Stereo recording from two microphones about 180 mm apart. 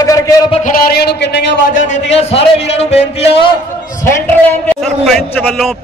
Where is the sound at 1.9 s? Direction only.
35° left (ahead or behind).